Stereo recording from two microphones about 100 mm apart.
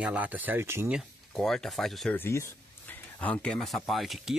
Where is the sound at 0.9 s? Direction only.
Centre (ahead or behind).